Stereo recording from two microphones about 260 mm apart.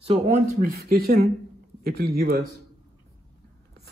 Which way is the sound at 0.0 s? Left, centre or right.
Right.